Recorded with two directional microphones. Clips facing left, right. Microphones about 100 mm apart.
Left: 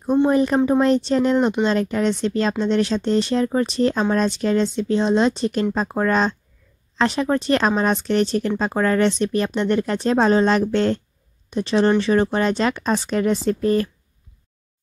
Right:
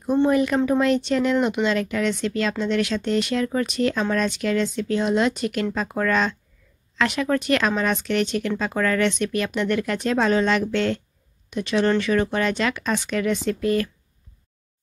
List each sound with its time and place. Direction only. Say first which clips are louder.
0.3 s speech: left 2 dB; 35° left (ahead or behind)